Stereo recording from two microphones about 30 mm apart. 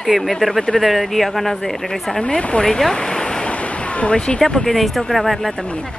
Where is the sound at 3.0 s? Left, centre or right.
Left.